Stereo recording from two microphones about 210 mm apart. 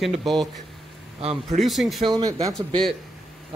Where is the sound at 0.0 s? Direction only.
Centre (ahead or behind).